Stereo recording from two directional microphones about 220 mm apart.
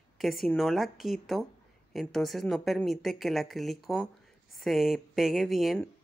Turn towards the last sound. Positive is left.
turn(degrees=0)  # may be behind; listen again after turning